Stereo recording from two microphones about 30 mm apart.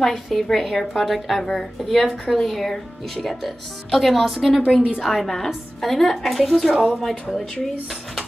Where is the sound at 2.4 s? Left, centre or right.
Centre.